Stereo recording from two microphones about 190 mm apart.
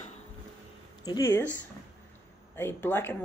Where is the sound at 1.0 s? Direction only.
20° left (ahead or behind).